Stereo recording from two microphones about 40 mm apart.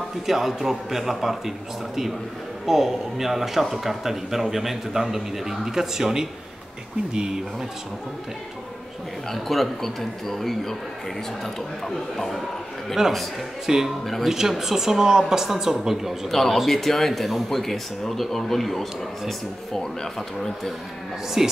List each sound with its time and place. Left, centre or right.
0.3 s a man's voice: centre
2.6 s a man's voice: centre
9.3 s speech: centre
13.0 s a man's voice: centre
16.3 s speech: centre
21.4 s a man's voice: centre